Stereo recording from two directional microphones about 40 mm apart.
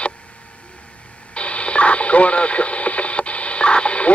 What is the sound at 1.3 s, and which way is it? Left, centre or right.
Radio, left.